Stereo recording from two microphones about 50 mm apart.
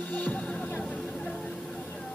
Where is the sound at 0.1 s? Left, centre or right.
Left.